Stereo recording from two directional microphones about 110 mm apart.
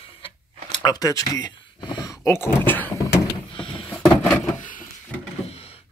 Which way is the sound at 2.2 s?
20° left (ahead or behind).